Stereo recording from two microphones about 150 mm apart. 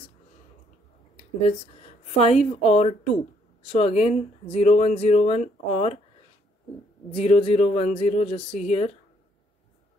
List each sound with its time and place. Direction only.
1.8 s speech: 45° left (ahead or behind)
7.1 s speech: 40° left (ahead or behind)